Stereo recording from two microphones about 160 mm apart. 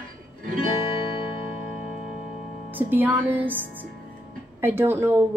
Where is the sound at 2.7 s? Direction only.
10° right (ahead or behind).